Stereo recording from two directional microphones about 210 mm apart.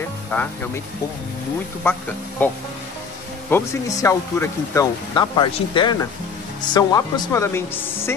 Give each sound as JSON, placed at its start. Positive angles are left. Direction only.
{"t": 0.3, "sound": "speech", "side_deg": 10}
{"t": 2.4, "sound": "speech", "side_deg": 10}